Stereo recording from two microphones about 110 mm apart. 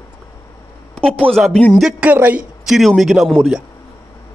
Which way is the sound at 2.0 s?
15° right (ahead or behind).